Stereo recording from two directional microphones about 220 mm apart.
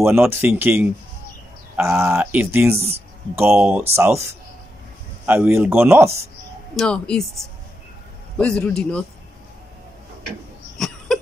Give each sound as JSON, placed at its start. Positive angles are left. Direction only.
{"t": 0.0, "sound": "speech", "side_deg": -10}
{"t": 6.8, "sound": "speech", "side_deg": 5}